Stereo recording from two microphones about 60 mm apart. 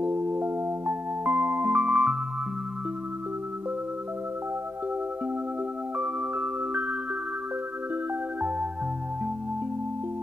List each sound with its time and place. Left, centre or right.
0.0 s music: right
5.9 s music: right
8.4 s music: right